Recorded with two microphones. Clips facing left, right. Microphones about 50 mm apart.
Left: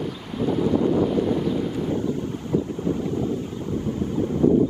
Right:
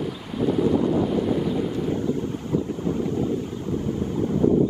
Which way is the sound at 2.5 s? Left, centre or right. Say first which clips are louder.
Left 2 dB; left.